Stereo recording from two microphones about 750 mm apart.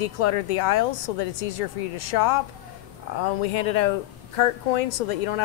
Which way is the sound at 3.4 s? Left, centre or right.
Left.